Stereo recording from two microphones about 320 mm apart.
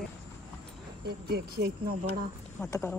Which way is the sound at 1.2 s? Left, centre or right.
Right.